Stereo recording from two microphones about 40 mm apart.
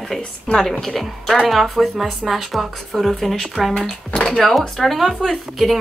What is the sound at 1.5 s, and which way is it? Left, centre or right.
A woman's voice, centre.